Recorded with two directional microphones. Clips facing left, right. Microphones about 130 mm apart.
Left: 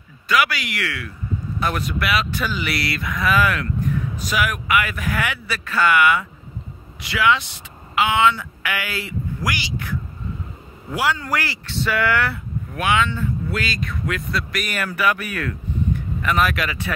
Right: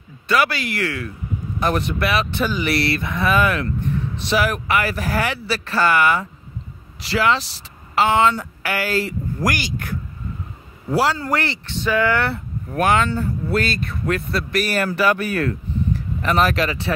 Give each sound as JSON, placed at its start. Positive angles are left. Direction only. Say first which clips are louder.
{"t": 0.3, "sound": "speech", "louder": "right 1 dB", "side_deg": -35}
{"t": 10.9, "sound": "speech", "louder": "right 3 dB", "side_deg": -35}
{"t": 12.7, "sound": "speech", "louder": "right 3 dB", "side_deg": -45}